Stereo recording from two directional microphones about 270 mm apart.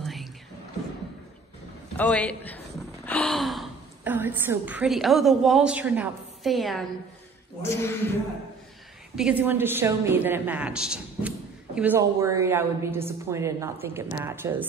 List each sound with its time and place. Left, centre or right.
0.0 s music: centre
2.0 s a man's voice: centre
9.1 s a woman's voice: centre